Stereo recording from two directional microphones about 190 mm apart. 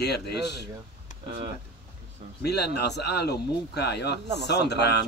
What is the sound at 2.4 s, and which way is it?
Speech, 60° left (ahead or behind).